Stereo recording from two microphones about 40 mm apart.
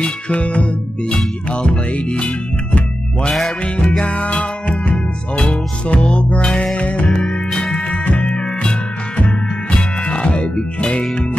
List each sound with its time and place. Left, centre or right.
0.0 s music: left
1.9 s music: left
3.3 s music: centre
3.6 s music: left
7.1 s music: centre
7.9 s music: left